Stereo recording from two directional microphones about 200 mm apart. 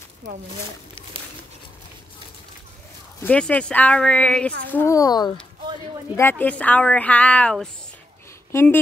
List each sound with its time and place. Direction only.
3.2 s a woman's voice: 5° left (ahead or behind)